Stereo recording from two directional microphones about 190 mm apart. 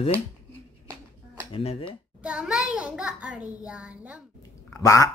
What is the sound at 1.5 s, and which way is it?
Speech, 30° left (ahead or behind).